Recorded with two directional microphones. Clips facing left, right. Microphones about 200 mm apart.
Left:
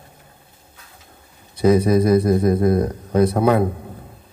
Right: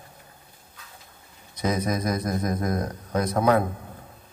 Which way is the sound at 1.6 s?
30° left (ahead or behind).